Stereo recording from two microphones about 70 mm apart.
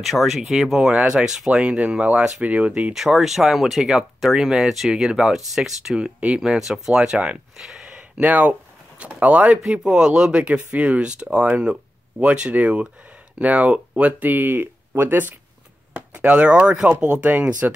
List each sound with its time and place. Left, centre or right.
0.0 s speech: centre
2.9 s speech: centre
8.2 s speech: right